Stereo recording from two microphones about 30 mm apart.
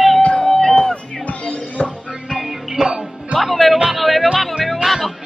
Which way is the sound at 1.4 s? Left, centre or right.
Left.